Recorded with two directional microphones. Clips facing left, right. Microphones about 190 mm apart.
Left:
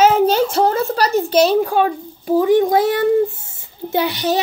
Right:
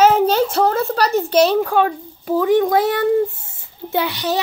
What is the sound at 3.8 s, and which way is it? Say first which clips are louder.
Speech: left 3 dB; 35° left (ahead or behind).